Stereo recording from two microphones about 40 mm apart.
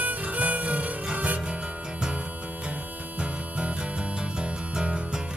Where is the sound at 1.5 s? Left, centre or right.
Right.